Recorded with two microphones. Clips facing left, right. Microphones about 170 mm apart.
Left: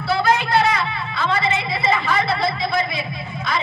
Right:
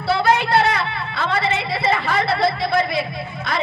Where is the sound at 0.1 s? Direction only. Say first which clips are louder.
Right 1 dB; 65° right (ahead or behind).